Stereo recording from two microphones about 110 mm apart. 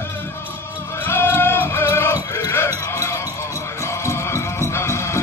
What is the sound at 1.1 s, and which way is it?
Music, 20° left (ahead or behind).